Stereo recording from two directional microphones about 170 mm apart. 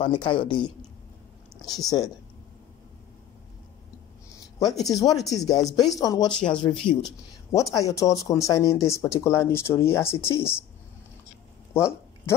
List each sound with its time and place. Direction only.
0.0 s speech: 30° left (ahead or behind)
1.7 s speech: 20° left (ahead or behind)
4.6 s speech: 20° left (ahead or behind)
11.7 s a sound: 15° left (ahead or behind)